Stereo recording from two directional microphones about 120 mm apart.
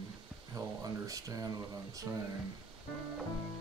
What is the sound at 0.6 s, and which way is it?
Speech, 30° right (ahead or behind).